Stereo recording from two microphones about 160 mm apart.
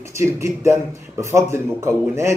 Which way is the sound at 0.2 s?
15° right (ahead or behind).